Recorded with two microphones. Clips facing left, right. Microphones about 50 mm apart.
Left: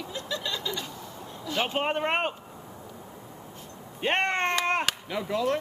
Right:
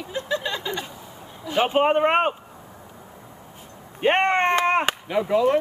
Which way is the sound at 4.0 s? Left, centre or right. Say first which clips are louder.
Right 7 dB; right.